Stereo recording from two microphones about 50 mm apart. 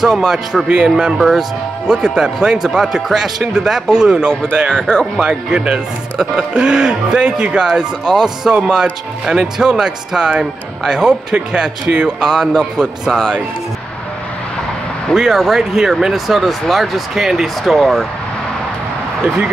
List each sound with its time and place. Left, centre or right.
0.0 s speech: centre
7.7 s speech: centre
15.1 s speech: centre